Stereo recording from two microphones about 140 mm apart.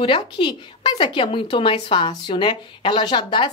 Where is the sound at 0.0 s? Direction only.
40° left (ahead or behind).